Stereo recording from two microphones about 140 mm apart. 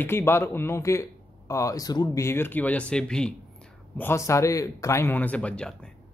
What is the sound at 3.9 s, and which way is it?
Speech, 15° left (ahead or behind).